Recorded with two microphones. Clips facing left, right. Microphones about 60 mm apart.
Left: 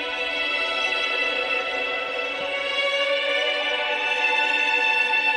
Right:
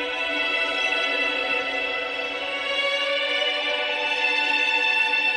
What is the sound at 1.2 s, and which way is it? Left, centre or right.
Music, centre.